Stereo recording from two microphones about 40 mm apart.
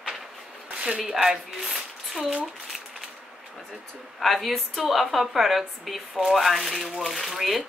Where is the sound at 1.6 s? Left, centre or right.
Centre.